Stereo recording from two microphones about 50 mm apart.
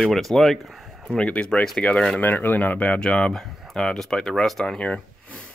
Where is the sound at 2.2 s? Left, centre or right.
Left; by 3.3 s centre.